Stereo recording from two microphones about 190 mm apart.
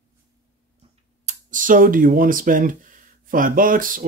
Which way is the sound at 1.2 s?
45° right (ahead or behind).